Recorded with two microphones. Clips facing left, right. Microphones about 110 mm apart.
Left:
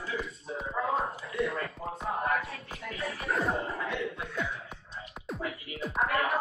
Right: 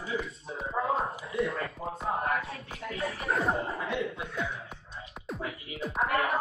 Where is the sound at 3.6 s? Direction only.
30° right (ahead or behind).